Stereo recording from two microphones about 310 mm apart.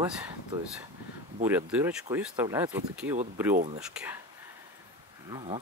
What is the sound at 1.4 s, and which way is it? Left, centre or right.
Speech, centre.